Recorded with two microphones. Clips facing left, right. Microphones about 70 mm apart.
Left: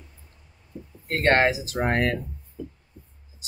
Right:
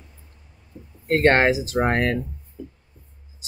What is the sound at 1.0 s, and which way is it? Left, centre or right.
Speech, right.